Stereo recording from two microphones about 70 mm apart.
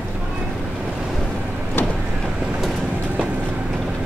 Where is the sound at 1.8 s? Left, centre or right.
Left.